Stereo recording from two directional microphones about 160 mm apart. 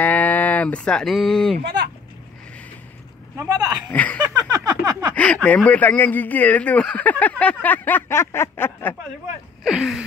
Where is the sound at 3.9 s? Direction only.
10° left (ahead or behind).